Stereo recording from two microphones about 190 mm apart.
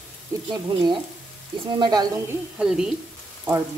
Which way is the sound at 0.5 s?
25° right (ahead or behind).